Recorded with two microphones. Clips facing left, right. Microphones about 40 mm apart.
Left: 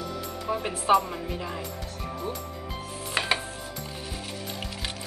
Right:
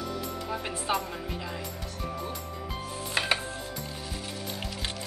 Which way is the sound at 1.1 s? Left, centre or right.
Centre.